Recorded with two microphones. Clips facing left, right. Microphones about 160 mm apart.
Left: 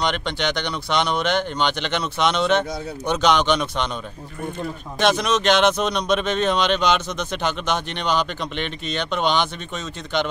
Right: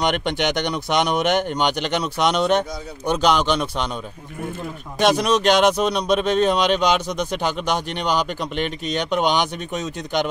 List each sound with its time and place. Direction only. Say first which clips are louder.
0.0 s speech: right 3 dB; 50° right (ahead or behind)
1.9 s speech: right 1 dB; 10° right (ahead or behind)
4.9 s speech: right 2 dB; 10° right (ahead or behind)